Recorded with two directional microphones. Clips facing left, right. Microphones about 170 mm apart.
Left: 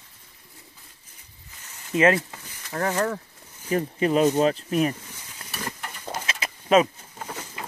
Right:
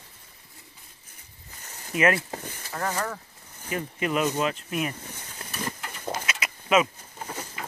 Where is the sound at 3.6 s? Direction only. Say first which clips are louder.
Left 6 dB; 35° left (ahead or behind).